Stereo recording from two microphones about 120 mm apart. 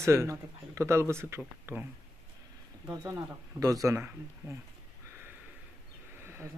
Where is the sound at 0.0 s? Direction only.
25° right (ahead or behind).